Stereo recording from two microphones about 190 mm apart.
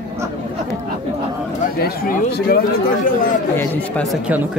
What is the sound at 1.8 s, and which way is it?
Speech, 50° left (ahead or behind).